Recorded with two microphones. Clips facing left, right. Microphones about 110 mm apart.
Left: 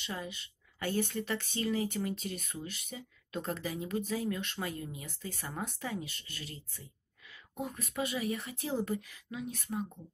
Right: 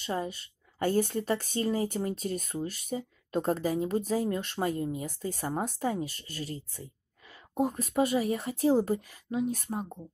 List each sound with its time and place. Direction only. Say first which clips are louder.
0.0 s speech: right 8 dB; 40° right (ahead or behind)